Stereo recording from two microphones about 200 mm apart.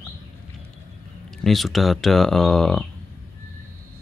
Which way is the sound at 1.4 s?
Centre (ahead or behind).